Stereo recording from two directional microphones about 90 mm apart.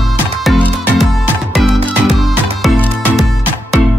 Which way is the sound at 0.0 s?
Centre (ahead or behind).